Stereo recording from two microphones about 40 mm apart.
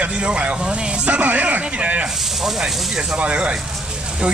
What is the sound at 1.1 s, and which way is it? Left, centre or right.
Speech, right.